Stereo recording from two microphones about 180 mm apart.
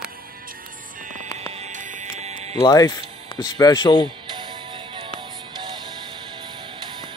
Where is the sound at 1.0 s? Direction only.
45° right (ahead or behind).